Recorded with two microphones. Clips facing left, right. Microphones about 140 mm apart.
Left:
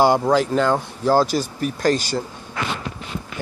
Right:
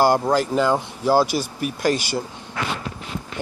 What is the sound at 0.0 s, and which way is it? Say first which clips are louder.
Speech: left 1 dB; 5° right (ahead or behind).